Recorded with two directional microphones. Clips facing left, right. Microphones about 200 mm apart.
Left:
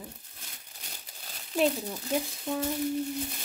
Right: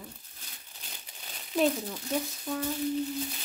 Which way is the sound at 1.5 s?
5° left (ahead or behind).